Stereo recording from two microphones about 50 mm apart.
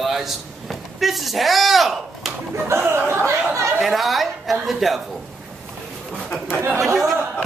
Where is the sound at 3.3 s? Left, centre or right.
Right.